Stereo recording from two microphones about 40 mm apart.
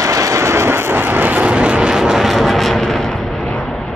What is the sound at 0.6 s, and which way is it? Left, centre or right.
Vehicle, right.